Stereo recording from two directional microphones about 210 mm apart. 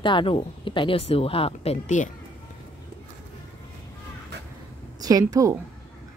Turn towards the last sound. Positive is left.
turn(degrees=-15)  # may be behind; listen again after turning